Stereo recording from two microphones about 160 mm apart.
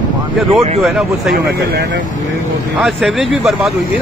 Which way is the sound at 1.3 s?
90° right.